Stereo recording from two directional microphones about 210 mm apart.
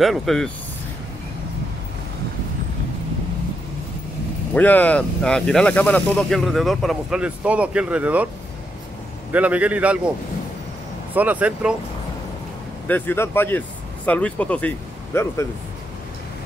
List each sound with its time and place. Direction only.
0.0 s speech: centre (ahead or behind)
4.6 s speech: 10° left (ahead or behind)
9.3 s a man's voice: 5° right (ahead or behind)
11.1 s a man's voice: 5° right (ahead or behind)
12.8 s speech: 10° left (ahead or behind)